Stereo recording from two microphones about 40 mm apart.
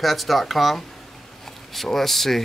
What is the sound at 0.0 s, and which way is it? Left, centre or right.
Speech, centre.